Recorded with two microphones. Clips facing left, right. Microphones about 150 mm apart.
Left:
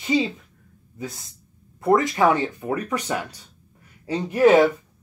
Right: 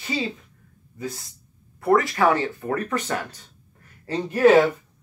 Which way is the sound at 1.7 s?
20° left (ahead or behind).